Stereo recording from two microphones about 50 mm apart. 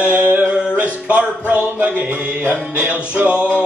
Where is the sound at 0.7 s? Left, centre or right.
Right.